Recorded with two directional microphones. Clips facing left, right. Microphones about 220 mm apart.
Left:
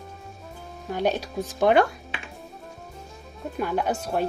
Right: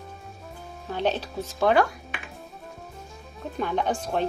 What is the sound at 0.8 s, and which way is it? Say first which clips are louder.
Speech: left 1 dB; 10° left (ahead or behind).